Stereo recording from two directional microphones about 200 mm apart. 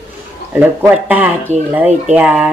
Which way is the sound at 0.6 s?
10° right (ahead or behind).